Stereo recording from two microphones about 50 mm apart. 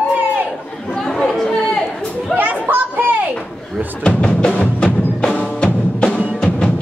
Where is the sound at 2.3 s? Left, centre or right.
Right.